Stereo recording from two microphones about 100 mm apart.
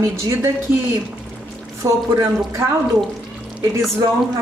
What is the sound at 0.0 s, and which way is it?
Speech, 30° right (ahead or behind).